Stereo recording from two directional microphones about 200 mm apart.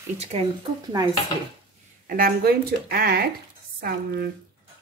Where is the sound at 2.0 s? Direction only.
45° right (ahead or behind).